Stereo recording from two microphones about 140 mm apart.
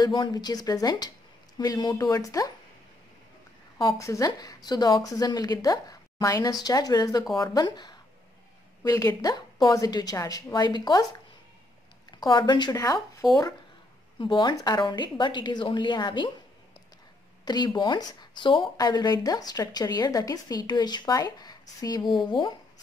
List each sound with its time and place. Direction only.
0.0 s a woman's voice: 30° left (ahead or behind)
3.7 s a woman's voice: 20° left (ahead or behind)
12.1 s a woman's voice: 30° left (ahead or behind)
17.5 s a woman's voice: 30° left (ahead or behind)